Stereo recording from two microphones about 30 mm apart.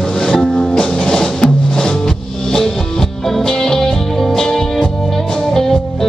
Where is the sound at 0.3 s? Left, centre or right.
Left.